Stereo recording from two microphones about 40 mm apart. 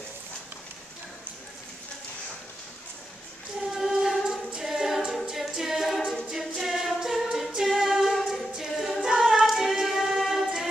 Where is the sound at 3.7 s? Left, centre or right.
Centre.